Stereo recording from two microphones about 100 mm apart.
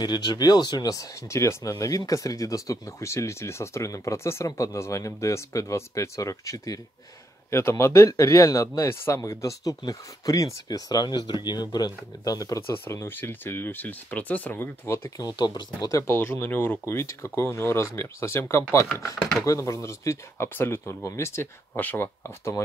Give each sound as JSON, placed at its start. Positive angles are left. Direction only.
{"t": 0.0, "sound": "speech", "side_deg": 45}
{"t": 15.0, "sound": "speech", "side_deg": 35}
{"t": 15.9, "sound": "speech", "side_deg": 25}